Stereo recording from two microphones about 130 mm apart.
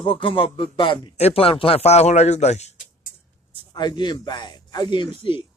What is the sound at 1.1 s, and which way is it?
Speech, 50° left (ahead or behind).